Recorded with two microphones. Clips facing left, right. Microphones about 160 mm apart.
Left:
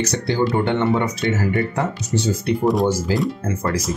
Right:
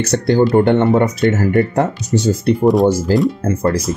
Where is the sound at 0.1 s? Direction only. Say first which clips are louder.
Right 7 dB; 50° right (ahead or behind).